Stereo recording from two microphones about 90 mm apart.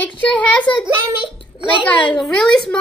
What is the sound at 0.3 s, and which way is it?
Speech, 15° left (ahead or behind).